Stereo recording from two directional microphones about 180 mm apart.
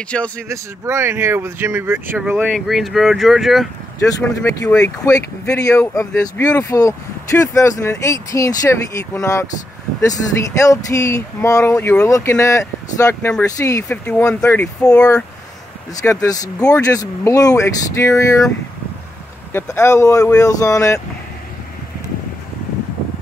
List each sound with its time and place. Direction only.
0.1 s speech: 5° left (ahead or behind)
0.5 s speech: 15° right (ahead or behind)
2.4 s speech: centre (ahead or behind)
4.0 s speech: 15° left (ahead or behind)
15.9 s speech: 20° left (ahead or behind)
19.5 s speech: 15° left (ahead or behind)